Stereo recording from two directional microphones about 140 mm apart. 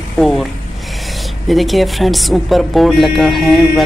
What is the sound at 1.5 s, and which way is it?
Speech, centre (ahead or behind).